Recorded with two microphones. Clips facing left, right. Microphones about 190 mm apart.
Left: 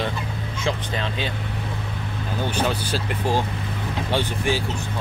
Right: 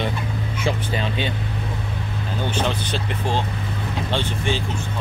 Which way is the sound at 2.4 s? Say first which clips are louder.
Even; 10° left (ahead or behind).